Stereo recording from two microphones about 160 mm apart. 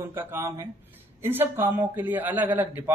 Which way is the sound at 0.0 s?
15° right (ahead or behind).